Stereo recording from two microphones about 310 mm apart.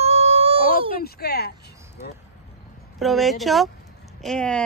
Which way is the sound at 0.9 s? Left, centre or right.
Left.